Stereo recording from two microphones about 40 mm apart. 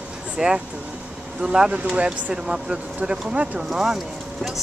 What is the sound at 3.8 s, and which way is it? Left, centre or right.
Speech, centre.